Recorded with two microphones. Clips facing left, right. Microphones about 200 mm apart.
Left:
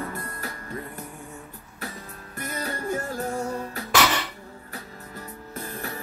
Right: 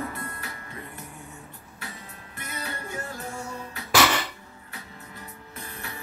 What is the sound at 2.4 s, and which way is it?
Music, 40° left (ahead or behind).